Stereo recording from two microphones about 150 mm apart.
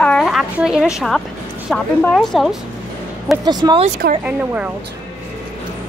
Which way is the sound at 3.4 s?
25° right (ahead or behind).